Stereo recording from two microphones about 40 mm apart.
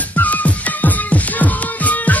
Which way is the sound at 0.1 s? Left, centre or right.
Left.